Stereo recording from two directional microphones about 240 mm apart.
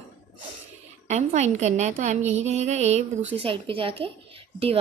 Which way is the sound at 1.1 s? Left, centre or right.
Right.